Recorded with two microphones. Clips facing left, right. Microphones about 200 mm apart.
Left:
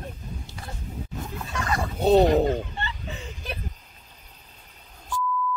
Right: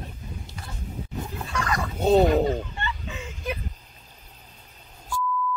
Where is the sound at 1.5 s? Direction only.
25° left (ahead or behind).